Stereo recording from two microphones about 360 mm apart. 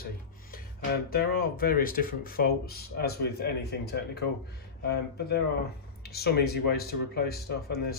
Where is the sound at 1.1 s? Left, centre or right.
Left.